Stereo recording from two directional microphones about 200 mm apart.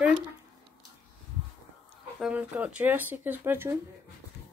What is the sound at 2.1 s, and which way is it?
Child singing, 5° right (ahead or behind).